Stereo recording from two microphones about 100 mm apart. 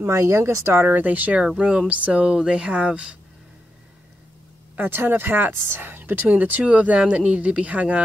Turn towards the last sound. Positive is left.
turn(degrees=-15)  # may be behind; listen again after turning